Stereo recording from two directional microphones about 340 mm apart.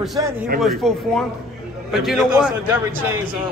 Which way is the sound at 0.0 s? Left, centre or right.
Centre.